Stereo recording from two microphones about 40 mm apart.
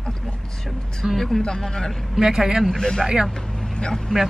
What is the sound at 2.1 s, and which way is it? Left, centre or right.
Speech, centre.